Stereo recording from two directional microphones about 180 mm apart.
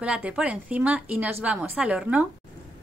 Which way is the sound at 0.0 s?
5° right (ahead or behind).